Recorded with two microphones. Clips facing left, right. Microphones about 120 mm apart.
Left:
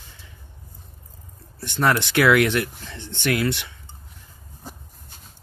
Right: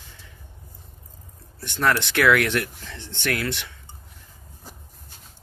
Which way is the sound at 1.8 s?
10° left (ahead or behind).